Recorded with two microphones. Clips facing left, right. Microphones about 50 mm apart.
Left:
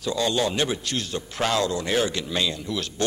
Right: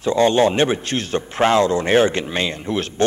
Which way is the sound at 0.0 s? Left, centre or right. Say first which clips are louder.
Right 9 dB; right.